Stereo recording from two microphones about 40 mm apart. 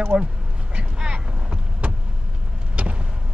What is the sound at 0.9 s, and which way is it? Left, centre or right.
Vehicle, right.